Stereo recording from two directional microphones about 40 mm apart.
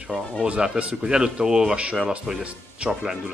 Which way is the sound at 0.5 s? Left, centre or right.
Right.